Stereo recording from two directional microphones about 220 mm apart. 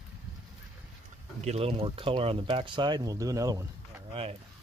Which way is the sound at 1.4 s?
30° right (ahead or behind).